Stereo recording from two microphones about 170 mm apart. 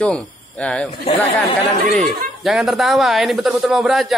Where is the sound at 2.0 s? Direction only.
Centre (ahead or behind).